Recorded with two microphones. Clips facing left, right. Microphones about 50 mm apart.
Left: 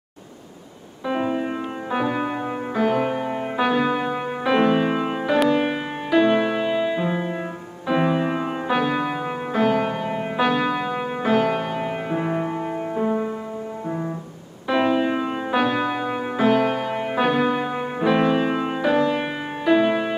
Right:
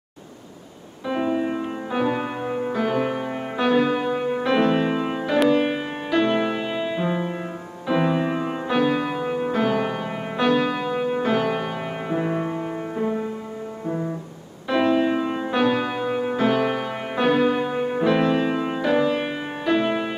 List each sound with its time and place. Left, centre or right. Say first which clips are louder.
1.0 s music: even; centre